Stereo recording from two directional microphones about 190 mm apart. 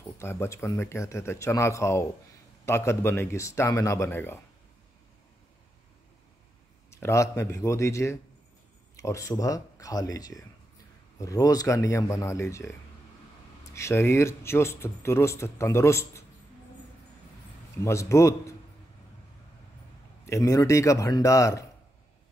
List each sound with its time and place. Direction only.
0.0 s a man's voice: 15° left (ahead or behind)
6.9 s a man's voice: 15° left (ahead or behind)
13.7 s a man's voice: 15° left (ahead or behind)
17.8 s a man's voice: 15° left (ahead or behind)
20.2 s a man's voice: 15° left (ahead or behind)